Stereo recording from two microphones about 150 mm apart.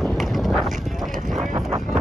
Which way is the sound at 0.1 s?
Centre (ahead or behind).